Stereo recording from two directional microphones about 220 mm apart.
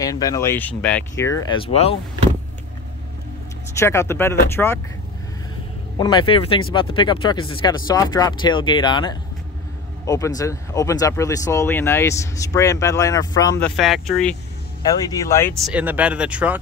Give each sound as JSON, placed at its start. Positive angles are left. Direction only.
{"t": 0.0, "sound": "speech", "side_deg": 15}
{"t": 3.7, "sound": "speech", "side_deg": 10}
{"t": 5.9, "sound": "speech", "side_deg": 20}
{"t": 15.0, "sound": "speech", "side_deg": 15}
{"t": 15.6, "sound": "speech", "side_deg": -5}